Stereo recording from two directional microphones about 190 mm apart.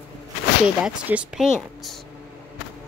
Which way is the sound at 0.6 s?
5° right (ahead or behind).